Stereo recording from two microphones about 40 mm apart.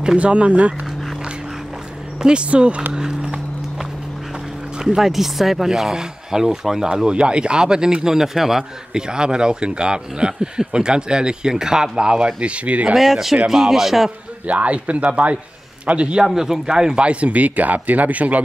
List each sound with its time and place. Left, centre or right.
0.2 s speech: right
2.2 s speech: right
2.9 s run: centre
4.9 s speech: centre
6.9 s speech: right
8.9 s speech: centre
12.9 s speech: centre
14.5 s speech: right
16.3 s speech: centre
17.0 s speech: right